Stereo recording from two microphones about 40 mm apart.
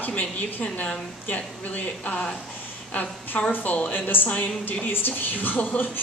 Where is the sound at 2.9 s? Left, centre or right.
Left.